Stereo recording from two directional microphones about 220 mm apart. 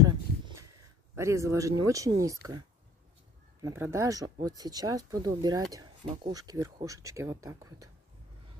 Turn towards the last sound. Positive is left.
turn(degrees=-15)  # may be behind; listen again after turning